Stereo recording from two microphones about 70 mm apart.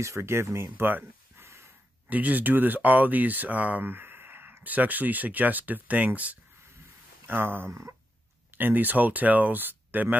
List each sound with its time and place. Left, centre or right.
0.0 s speech: right
8.5 s speech: right